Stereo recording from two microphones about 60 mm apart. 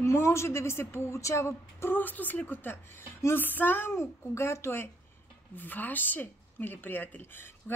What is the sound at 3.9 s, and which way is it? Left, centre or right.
Speech, left.